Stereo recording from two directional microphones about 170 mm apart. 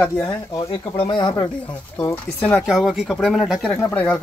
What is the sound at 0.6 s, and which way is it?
Speech, 30° left (ahead or behind).